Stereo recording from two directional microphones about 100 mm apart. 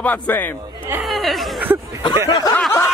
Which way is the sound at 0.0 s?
20° left (ahead or behind).